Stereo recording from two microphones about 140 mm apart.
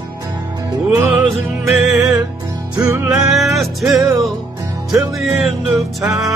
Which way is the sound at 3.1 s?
Centre (ahead or behind).